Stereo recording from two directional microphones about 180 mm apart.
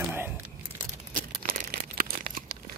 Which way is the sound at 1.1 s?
50° right (ahead or behind).